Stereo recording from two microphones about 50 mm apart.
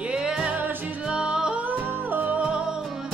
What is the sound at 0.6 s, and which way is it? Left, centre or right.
Music, right.